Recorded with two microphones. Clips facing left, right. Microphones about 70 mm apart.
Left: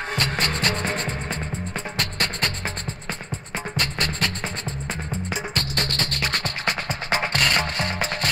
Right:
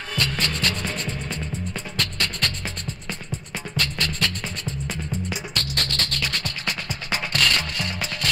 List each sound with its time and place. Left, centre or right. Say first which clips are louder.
0.1 s music: even; left
3.7 s music: even; left